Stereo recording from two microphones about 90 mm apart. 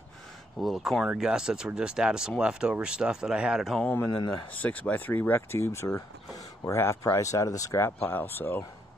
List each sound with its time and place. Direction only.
0.6 s speech: centre (ahead or behind)
4.5 s speech: 15° left (ahead or behind)